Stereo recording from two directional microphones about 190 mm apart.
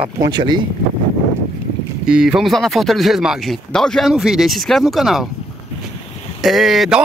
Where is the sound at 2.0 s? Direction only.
5° right (ahead or behind).